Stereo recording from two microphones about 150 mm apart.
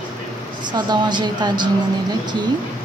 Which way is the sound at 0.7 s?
30° right (ahead or behind).